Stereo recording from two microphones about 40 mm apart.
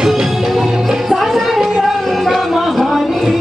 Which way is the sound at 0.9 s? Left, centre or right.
Centre.